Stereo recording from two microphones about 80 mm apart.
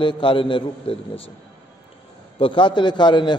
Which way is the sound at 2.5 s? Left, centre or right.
Left.